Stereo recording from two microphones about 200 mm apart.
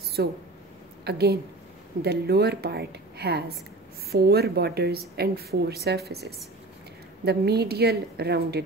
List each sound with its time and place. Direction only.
0.2 s speech: 55° right (ahead or behind)